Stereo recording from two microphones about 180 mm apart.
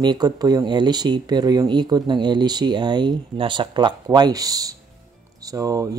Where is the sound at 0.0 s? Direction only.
20° right (ahead or behind).